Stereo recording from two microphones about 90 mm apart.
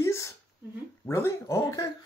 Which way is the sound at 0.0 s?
35° left (ahead or behind).